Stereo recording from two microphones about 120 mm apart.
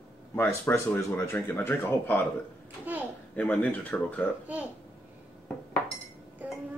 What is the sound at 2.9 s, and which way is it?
Speech, 15° right (ahead or behind).